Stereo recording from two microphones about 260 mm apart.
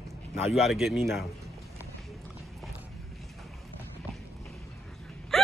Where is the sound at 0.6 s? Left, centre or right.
Centre.